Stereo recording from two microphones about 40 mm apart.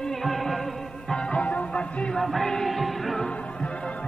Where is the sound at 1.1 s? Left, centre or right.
Left.